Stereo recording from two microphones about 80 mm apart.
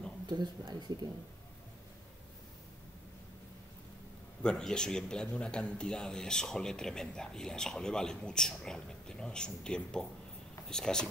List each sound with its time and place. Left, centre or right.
0.3 s speech: right
4.4 s speech: centre